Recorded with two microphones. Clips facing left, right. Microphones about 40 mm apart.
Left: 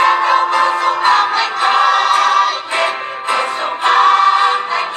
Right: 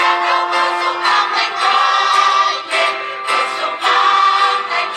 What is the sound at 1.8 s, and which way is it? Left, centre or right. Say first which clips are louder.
Music: left 1 dB; left.